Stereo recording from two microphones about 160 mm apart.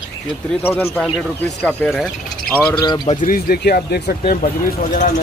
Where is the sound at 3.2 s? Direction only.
65° left (ahead or behind).